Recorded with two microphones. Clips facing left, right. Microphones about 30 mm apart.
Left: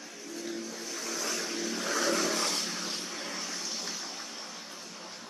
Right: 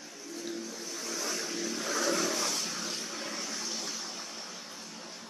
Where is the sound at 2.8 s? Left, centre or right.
Centre.